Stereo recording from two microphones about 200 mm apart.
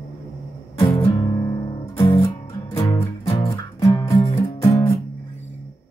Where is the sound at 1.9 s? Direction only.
25° left (ahead or behind).